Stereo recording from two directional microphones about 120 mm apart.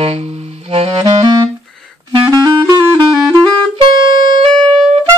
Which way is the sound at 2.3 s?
35° right (ahead or behind).